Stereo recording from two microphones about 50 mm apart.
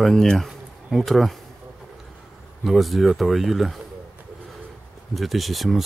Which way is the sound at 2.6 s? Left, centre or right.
Centre.